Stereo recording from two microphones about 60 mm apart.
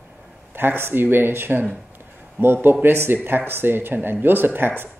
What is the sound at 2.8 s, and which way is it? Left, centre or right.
Speech, right.